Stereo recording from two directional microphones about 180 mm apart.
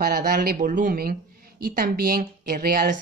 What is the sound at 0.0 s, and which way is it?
Speech, 50° right (ahead or behind).